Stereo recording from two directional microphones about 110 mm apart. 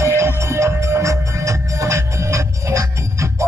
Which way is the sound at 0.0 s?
25° right (ahead or behind).